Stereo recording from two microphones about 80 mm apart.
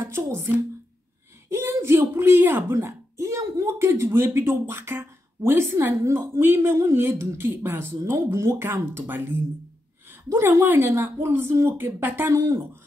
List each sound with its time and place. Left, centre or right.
0.0 s a woman's voice: right
1.5 s a woman's voice: right